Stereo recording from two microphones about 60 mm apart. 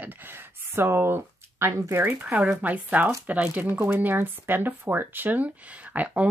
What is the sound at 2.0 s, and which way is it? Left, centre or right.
Speech, right.